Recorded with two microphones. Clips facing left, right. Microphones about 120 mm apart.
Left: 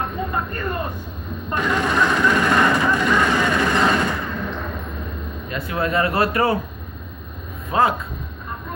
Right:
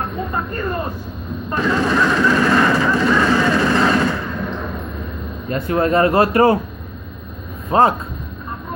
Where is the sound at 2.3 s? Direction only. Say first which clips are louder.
Right 2 dB; 35° right (ahead or behind).